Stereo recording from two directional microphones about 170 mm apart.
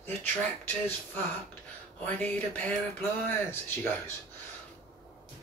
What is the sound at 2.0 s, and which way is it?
Speech, 10° left (ahead or behind).